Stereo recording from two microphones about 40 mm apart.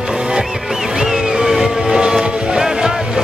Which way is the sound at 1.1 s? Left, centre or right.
Centre.